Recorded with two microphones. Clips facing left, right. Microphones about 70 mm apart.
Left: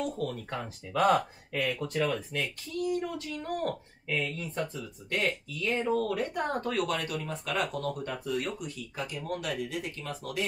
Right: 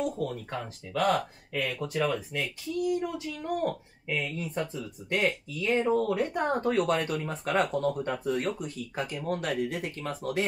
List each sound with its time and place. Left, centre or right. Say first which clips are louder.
0.0 s speech: right 2 dB; centre; by 10.4 s right